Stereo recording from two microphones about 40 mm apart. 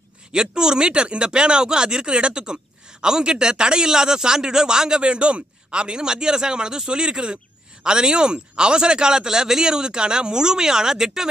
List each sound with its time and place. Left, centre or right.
0.3 s speech: centre